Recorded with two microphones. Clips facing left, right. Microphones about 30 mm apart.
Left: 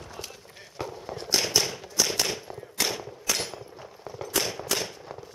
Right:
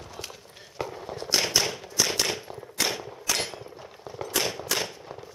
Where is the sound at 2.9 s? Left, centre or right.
Centre.